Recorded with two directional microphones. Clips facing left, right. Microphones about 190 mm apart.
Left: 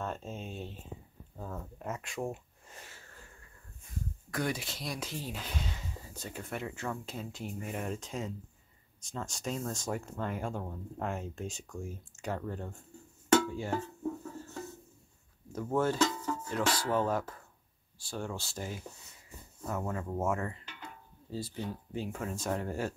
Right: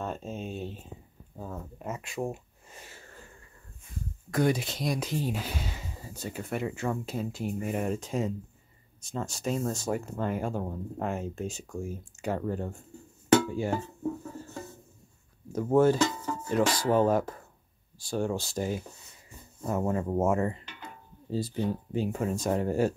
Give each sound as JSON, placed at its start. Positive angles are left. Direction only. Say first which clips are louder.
{"t": 0.0, "sound": "a sound", "louder": "right 4 dB", "side_deg": -15}
{"t": 4.3, "sound": "speech", "louder": "right 8 dB", "side_deg": -20}
{"t": 13.4, "sound": "music", "louder": "right 4 dB", "side_deg": -10}
{"t": 15.5, "sound": "speech", "louder": "right 8 dB", "side_deg": -15}